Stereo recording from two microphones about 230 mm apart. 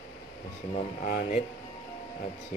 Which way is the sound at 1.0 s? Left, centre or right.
Left.